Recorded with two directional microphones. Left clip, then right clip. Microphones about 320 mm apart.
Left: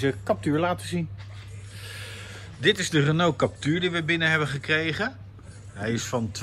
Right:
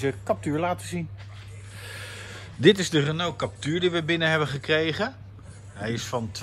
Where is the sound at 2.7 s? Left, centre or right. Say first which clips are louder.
Even; centre.